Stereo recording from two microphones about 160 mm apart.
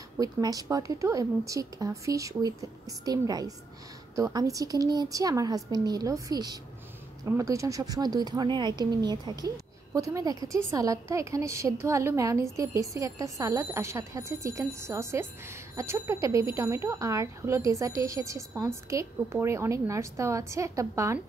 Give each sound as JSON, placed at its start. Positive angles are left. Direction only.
{"t": 0.2, "sound": "a woman's voice", "side_deg": -20}